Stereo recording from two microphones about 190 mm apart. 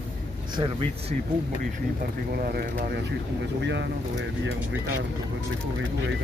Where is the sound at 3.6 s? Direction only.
70° right (ahead or behind).